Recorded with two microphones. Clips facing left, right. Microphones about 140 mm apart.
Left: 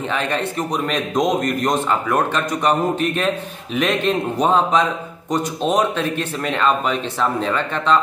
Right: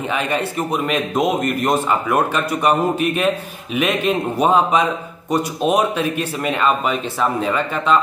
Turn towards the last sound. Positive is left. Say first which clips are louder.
# right 1 dB
turn(degrees=-5)  # may be behind; listen again after turning